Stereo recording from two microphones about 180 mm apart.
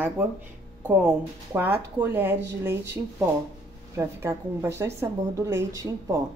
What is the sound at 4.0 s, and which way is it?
A woman's voice, 15° right (ahead or behind).